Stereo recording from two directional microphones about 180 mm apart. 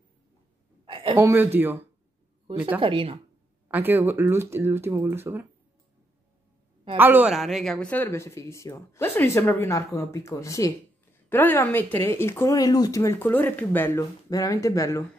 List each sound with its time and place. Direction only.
0.8 s a sound: 30° right (ahead or behind)
1.1 s speech: 10° right (ahead or behind)
2.8 s speech: 30° right (ahead or behind)
3.6 s speech: 10° right (ahead or behind)
7.0 s speech: 10° right (ahead or behind); by 15.0 s 15° left (ahead or behind)